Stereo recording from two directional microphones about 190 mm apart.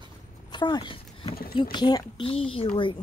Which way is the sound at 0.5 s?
25° left (ahead or behind).